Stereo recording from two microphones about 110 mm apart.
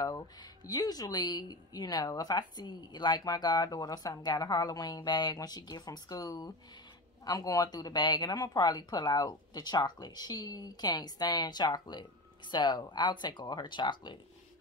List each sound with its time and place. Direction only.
0.7 s speech: 35° left (ahead or behind)